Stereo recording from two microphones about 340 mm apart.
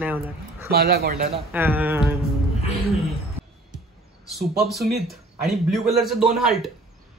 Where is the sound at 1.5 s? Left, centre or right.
Centre.